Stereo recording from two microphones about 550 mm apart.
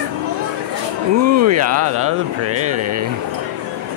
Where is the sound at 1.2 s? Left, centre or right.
Right.